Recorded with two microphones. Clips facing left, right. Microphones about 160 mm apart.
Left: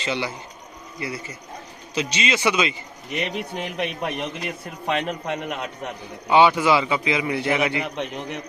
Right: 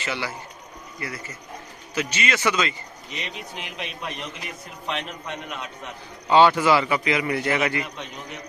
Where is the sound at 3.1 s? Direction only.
55° left (ahead or behind).